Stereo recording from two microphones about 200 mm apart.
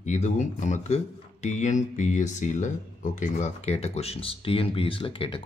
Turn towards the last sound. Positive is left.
turn(degrees=25)  # may be behind; listen again after turning